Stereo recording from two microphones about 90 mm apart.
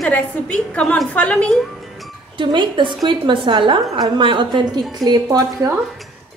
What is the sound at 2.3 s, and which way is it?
A woman's voice, 65° right (ahead or behind).